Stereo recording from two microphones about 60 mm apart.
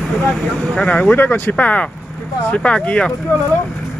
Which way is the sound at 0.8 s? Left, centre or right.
Left.